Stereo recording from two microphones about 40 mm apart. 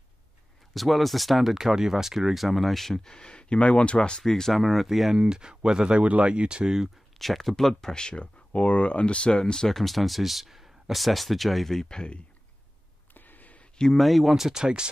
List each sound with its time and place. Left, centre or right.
0.7 s speech: centre; by 4.2 s left
4.2 s speech: centre
5.2 s speech: right
6.0 s speech: right
7.2 s speech: centre
7.8 s speech: centre
8.2 s speech: left; by 9.7 s centre
9.7 s speech: centre
11.9 s speech: centre
13.1 s a sound: left
13.9 s speech: centre; by 14.9 s right